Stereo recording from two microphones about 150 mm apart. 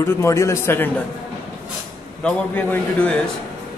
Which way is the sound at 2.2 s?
10° left (ahead or behind).